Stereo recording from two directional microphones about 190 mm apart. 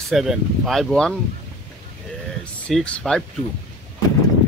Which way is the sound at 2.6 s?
5° left (ahead or behind).